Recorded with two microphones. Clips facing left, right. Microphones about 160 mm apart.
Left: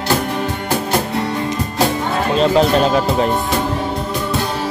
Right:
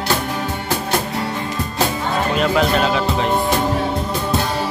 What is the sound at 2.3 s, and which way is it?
Speech, 35° left (ahead or behind).